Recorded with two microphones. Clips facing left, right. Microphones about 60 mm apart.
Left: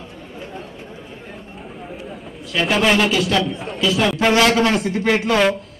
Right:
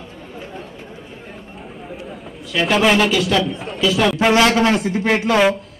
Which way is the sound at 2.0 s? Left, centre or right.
Centre.